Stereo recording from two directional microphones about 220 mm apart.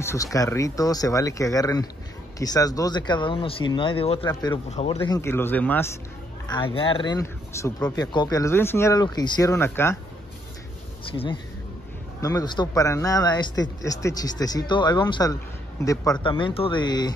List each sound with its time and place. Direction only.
0.0 s speech: 15° left (ahead or behind)
4.6 s speech: 30° left (ahead or behind)
4.9 s speech: 15° left (ahead or behind)
6.4 s speech: 20° left (ahead or behind)
12.2 s speech: 15° left (ahead or behind)